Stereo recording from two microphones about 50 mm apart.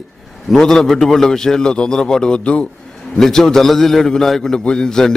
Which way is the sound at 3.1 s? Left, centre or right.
Centre.